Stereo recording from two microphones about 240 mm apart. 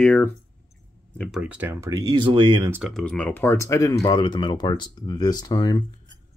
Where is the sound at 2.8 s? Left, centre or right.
Centre.